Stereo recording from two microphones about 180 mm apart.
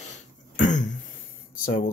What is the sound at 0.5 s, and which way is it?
Throat clearing, 45° left (ahead or behind).